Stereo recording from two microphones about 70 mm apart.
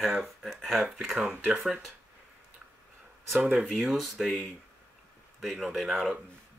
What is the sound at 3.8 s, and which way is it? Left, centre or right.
Speech, centre.